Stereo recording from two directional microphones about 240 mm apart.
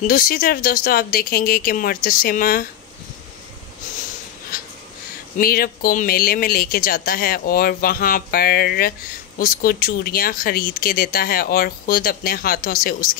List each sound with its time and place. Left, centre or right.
0.0 s speech: left
5.4 s speech: left